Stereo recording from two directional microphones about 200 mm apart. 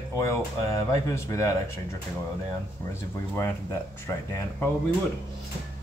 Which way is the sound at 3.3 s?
10° left (ahead or behind).